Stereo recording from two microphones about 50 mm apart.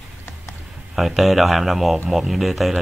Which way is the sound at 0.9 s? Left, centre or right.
Centre.